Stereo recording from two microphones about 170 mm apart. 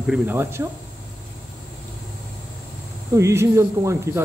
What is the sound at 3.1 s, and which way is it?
Speech, 15° right (ahead or behind).